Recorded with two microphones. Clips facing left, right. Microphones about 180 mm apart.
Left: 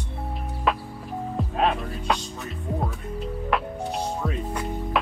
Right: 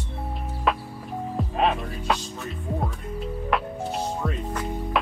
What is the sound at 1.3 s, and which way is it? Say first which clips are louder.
Music: even; centre (ahead or behind).